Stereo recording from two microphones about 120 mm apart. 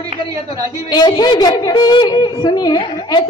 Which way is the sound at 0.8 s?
40° left (ahead or behind).